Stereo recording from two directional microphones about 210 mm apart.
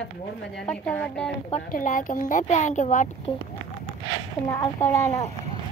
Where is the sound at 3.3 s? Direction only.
20° left (ahead or behind).